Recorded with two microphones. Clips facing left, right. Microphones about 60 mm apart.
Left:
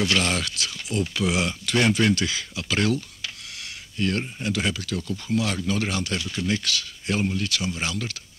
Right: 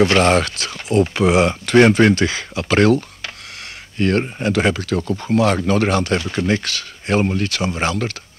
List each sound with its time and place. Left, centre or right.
0.0 s speech: right